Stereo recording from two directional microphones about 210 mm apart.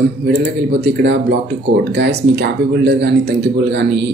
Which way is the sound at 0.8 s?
55° right (ahead or behind).